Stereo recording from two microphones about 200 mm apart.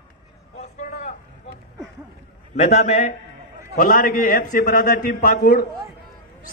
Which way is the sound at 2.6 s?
35° left (ahead or behind).